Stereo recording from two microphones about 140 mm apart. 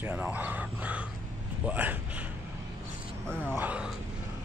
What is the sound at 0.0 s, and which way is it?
Speech, 10° right (ahead or behind).